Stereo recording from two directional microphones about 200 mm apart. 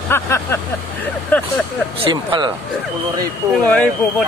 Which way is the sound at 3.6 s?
5° left (ahead or behind).